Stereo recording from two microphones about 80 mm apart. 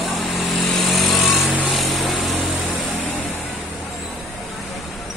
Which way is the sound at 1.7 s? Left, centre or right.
Centre.